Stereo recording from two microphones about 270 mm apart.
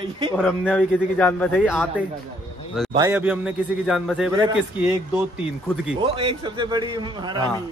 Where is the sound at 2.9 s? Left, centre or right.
Centre.